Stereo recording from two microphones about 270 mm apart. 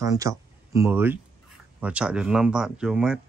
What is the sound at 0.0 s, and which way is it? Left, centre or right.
Speech, centre.